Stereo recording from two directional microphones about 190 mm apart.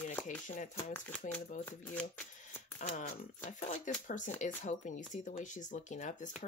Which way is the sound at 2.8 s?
40° left (ahead or behind).